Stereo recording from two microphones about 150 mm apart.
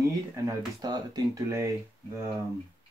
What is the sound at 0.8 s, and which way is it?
Speech, 25° right (ahead or behind).